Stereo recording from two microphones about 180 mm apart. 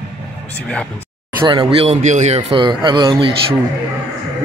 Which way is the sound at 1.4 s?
25° right (ahead or behind).